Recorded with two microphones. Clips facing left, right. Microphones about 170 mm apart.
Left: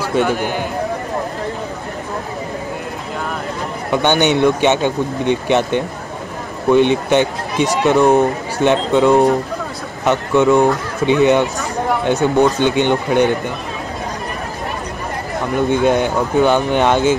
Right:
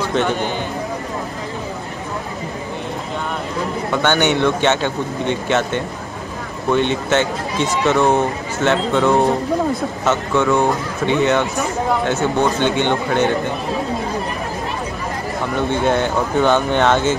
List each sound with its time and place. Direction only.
0.0 s a man's voice: 10° left (ahead or behind)
3.9 s speech: 15° left (ahead or behind)
15.7 s speech: 15° left (ahead or behind)